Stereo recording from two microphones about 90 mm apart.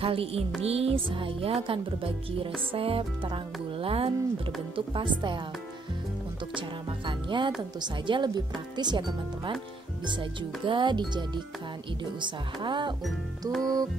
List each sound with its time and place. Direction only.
0.0 s music: 90° right
4.7 s speech: 65° right (ahead or behind)
7.1 s speech: 65° right (ahead or behind)
10.0 s speech: 65° right (ahead or behind)
12.6 s speech: 60° right (ahead or behind)
13.5 s music: 5° left (ahead or behind)